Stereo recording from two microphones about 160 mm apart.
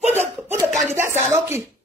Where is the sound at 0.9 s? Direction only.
15° right (ahead or behind).